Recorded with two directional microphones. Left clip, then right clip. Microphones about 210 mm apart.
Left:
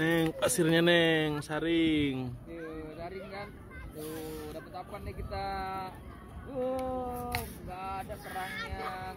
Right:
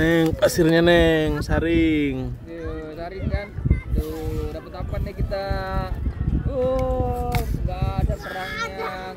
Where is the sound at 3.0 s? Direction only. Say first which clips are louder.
Right 10 dB; 55° right (ahead or behind).